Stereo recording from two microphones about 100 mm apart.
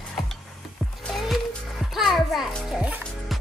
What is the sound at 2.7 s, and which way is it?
Speech, 10° right (ahead or behind).